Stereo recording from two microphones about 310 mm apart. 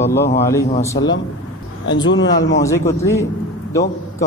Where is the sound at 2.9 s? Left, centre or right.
Centre.